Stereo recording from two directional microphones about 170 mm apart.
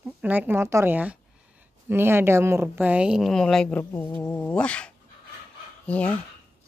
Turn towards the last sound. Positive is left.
turn(degrees=10)  # may be behind; listen again after turning